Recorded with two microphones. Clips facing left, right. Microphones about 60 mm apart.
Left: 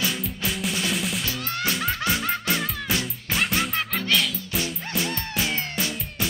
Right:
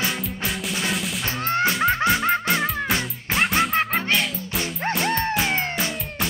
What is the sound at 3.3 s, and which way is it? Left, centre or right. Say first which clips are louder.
Music: right 4 dB; centre.